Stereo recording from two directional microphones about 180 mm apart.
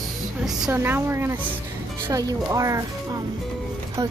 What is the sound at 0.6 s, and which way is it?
A woman's voice, 10° right (ahead or behind).